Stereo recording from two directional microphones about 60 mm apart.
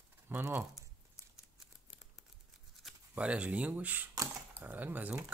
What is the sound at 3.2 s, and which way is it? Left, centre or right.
Speech, right.